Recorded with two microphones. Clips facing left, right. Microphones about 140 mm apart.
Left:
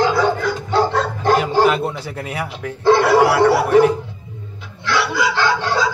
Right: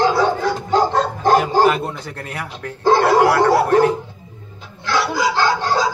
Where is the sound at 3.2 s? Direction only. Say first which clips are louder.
Even; 10° left (ahead or behind).